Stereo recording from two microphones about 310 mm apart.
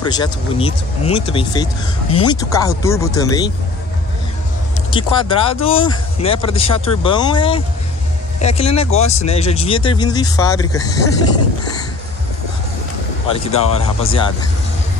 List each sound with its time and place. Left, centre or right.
0.0 s speech: centre
4.9 s speech: centre
13.5 s speech: centre